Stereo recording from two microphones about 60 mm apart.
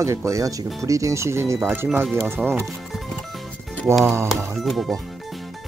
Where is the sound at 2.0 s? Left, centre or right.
Right.